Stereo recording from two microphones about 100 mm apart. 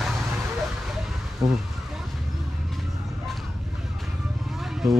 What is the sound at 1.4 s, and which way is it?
Speech, 35° right (ahead or behind).